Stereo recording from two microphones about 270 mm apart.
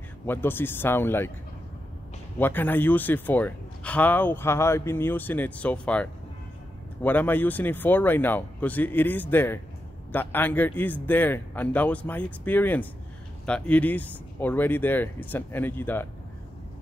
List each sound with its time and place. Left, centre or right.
0.3 s speech: centre
2.3 s speech: centre